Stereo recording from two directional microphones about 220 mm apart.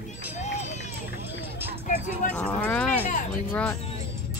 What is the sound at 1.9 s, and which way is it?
Music, 35° left (ahead or behind).